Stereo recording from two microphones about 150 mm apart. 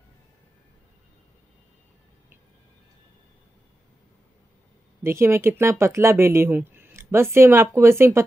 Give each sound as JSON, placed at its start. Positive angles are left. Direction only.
{"t": 5.0, "sound": "speech", "side_deg": -15}